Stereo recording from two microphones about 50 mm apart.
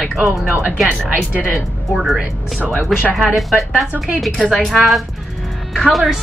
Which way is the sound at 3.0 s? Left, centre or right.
Right.